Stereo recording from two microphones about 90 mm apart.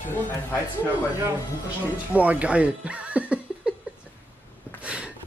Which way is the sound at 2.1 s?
15° right (ahead or behind).